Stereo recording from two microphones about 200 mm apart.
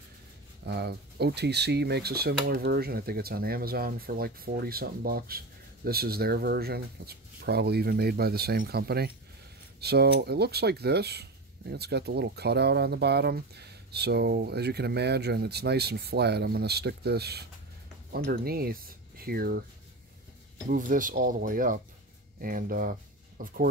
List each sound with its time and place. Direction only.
0.7 s speech: 55° right (ahead or behind)
20.6 s speech: 40° right (ahead or behind)